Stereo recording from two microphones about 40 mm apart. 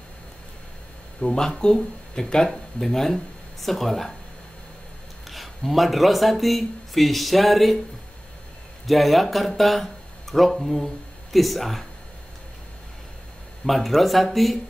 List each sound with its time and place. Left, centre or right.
1.2 s speech: centre
5.3 s speech: centre
8.8 s speech: centre
13.7 s speech: centre